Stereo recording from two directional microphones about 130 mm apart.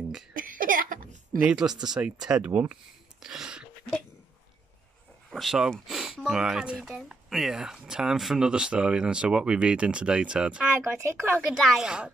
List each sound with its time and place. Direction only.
0.3 s a sound: 90° right
1.5 s speech: 5° right (ahead or behind)
5.3 s speech: centre (ahead or behind)
10.8 s speech: 20° right (ahead or behind)
11.6 s speech: 5° right (ahead or behind)